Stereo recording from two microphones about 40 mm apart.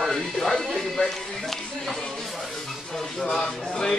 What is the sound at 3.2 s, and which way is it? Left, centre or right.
Speech, centre.